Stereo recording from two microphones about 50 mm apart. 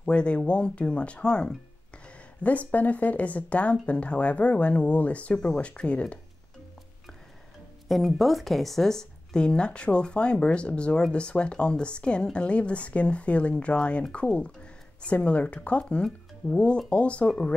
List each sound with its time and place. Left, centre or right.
0.0 s speech: left
2.4 s speech: left
7.9 s speech: centre; by 17.6 s left